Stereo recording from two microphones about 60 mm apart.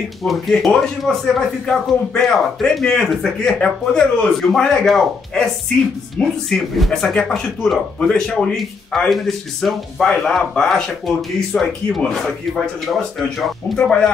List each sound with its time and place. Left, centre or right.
0.2 s speech: centre
6.2 s speech: centre
6.5 s speech: centre
13.7 s speech: centre